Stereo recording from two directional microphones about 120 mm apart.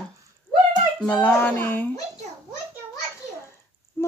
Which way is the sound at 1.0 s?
10° left (ahead or behind).